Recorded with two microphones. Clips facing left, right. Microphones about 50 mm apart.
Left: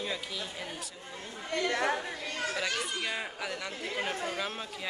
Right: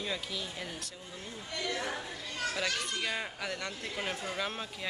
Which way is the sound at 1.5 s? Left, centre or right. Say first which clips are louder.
Left 6 dB; left.